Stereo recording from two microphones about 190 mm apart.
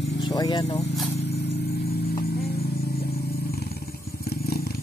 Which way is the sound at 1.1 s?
65° left (ahead or behind).